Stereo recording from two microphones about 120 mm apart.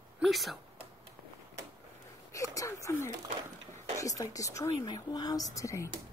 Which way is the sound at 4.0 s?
30° left (ahead or behind).